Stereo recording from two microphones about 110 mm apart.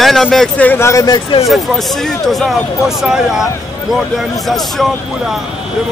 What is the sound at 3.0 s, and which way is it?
Speech, 5° right (ahead or behind).